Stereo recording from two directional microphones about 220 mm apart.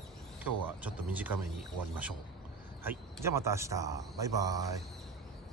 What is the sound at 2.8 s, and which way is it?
Speech, 10° right (ahead or behind).